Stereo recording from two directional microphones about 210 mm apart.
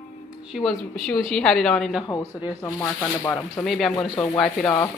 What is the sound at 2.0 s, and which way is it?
Speech, 15° left (ahead or behind).